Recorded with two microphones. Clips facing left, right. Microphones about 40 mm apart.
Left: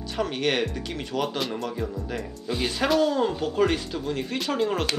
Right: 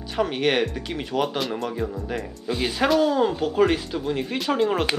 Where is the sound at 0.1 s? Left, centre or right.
Centre.